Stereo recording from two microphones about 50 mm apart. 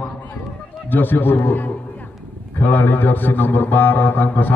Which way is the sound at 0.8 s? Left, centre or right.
Left.